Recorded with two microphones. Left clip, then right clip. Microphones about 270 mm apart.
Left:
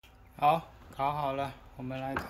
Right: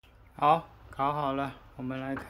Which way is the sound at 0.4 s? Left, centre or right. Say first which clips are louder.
Right 2 dB; centre.